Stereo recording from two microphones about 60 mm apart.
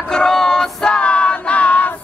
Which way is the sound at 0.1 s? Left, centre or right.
Centre.